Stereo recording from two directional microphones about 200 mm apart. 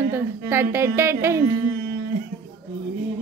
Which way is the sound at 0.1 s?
10° right (ahead or behind).